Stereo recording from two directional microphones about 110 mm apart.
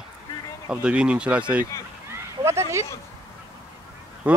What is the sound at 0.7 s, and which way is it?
Speech, 10° right (ahead or behind).